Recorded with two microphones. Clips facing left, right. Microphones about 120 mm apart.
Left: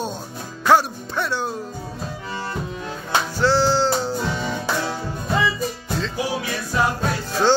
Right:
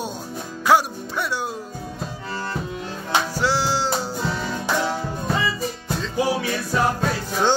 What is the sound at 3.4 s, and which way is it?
Music, 10° right (ahead or behind).